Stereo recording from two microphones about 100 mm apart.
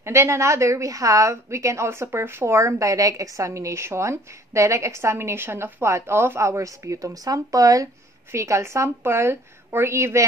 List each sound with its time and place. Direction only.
0.0 s a woman's voice: 25° right (ahead or behind)